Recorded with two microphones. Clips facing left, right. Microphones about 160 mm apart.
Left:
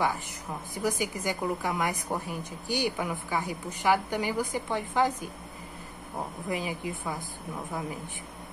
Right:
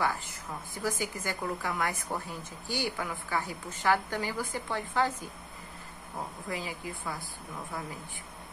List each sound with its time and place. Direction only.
0.8 s a woman's voice: 15° left (ahead or behind)
6.1 s a woman's voice: 20° left (ahead or behind)